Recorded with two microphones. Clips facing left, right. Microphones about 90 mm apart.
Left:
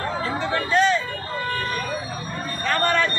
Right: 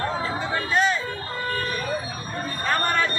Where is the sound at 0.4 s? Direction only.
5° right (ahead or behind).